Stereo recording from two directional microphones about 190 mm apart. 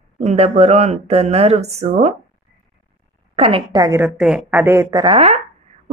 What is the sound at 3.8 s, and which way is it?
A woman's voice, 10° right (ahead or behind).